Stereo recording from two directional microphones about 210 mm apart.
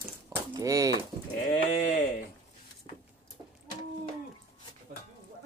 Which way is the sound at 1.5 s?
35° left (ahead or behind).